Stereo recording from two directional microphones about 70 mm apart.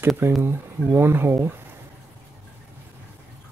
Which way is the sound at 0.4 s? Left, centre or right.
Right.